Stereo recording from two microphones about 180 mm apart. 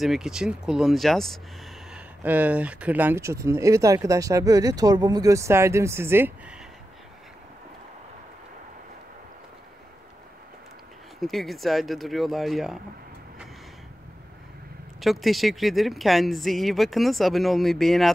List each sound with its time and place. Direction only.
0.0 s speech: centre (ahead or behind)
11.1 s speech: centre (ahead or behind)
15.0 s speech: centre (ahead or behind)